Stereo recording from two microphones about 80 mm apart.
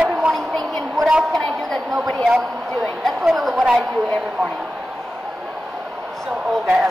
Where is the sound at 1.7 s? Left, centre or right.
Centre.